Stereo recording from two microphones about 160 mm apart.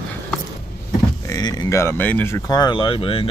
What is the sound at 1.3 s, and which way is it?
Speech, 25° left (ahead or behind).